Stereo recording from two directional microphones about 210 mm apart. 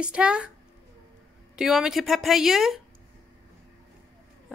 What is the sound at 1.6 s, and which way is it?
Speech, centre (ahead or behind).